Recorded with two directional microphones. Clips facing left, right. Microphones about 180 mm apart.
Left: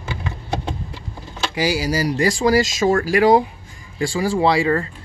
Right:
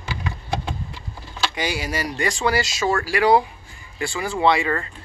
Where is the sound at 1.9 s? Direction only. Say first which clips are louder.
Left 6 dB; 30° left (ahead or behind).